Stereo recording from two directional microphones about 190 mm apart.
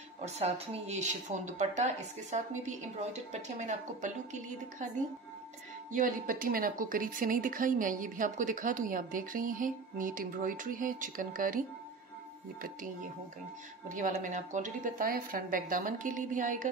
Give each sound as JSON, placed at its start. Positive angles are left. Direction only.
{"t": 0.2, "sound": "speech", "side_deg": -35}
{"t": 5.9, "sound": "a woman's voice", "side_deg": -45}
{"t": 13.8, "sound": "a woman's voice", "side_deg": -45}